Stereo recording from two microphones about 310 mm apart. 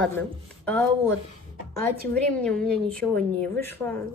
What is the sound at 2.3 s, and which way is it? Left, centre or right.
Speech, centre.